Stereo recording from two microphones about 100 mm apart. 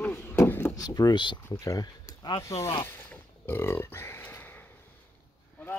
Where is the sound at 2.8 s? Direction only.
15° left (ahead or behind).